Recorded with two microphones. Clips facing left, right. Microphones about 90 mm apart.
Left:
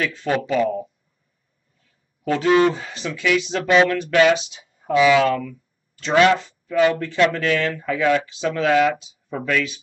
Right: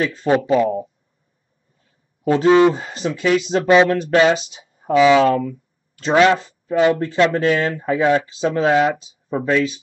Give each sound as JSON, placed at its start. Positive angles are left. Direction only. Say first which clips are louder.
{"t": 0.0, "sound": "speech", "louder": "right 5 dB", "side_deg": -35}
{"t": 2.2, "sound": "speech", "louder": "right 4 dB", "side_deg": -25}
{"t": 2.8, "sound": "speech", "louder": "right 4 dB", "side_deg": -40}